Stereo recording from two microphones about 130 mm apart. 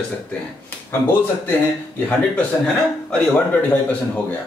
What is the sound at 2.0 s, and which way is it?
A man's voice, 10° left (ahead or behind).